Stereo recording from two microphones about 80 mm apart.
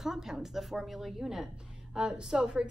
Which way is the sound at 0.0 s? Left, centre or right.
Centre.